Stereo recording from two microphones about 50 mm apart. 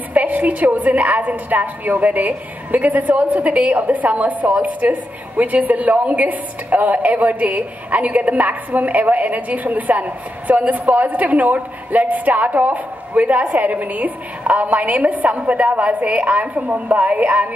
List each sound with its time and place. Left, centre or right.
0.1 s a woman's voice: right